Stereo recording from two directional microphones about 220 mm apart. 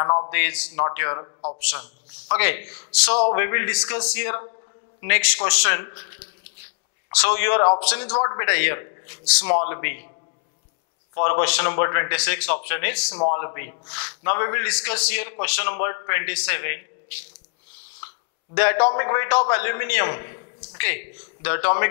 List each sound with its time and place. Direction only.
0.0 s a sound: 25° left (ahead or behind)
0.3 s a man's voice: 10° left (ahead or behind)
2.3 s a man's voice: 10° left (ahead or behind)
8.1 s a man's voice: 20° left (ahead or behind)
11.1 s a man's voice: 15° left (ahead or behind)
13.1 s a man's voice: 25° left (ahead or behind)
18.5 s a man's voice: 15° left (ahead or behind)